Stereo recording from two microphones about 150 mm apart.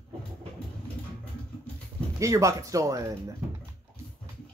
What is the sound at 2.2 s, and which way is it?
Speech, 20° right (ahead or behind).